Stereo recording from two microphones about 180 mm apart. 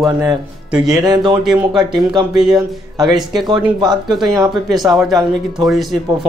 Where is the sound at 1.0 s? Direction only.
20° right (ahead or behind).